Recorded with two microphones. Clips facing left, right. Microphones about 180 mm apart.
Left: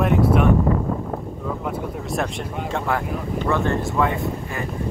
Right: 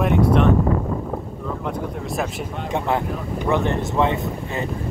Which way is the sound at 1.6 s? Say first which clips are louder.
Even; centre (ahead or behind).